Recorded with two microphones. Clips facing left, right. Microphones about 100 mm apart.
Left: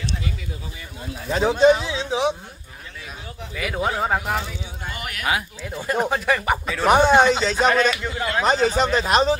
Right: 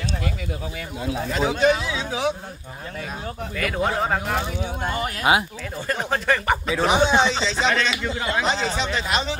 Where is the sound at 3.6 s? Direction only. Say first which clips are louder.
Even; 5° left (ahead or behind).